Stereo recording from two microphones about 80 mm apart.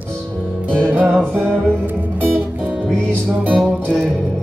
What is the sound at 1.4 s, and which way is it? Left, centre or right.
Music, centre.